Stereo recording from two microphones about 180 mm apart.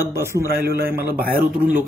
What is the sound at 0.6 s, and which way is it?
Speech, 55° right (ahead or behind).